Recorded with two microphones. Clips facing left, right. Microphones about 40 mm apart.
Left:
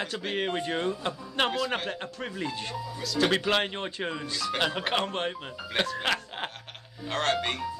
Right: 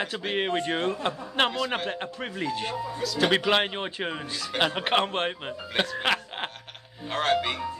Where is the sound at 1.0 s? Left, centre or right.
Right.